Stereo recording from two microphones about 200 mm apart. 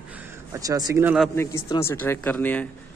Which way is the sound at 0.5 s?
20° right (ahead or behind).